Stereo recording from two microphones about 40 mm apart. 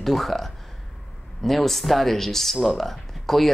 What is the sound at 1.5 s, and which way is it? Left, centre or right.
Speech, centre.